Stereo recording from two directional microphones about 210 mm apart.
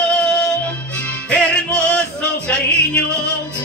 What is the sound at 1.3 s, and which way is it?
Music, 5° left (ahead or behind).